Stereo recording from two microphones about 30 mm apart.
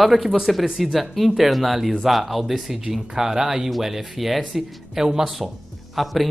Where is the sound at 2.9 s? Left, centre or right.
Centre.